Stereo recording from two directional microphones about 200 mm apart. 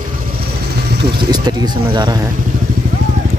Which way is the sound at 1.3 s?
20° right (ahead or behind).